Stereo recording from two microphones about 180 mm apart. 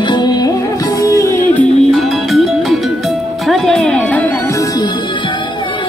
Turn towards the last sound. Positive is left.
turn(degrees=20)  # may be behind; listen again after turning